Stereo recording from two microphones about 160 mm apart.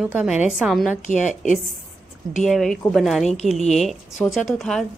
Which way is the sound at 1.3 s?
50° left (ahead or behind).